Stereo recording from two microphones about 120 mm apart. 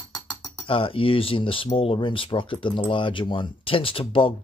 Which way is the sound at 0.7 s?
50° left (ahead or behind).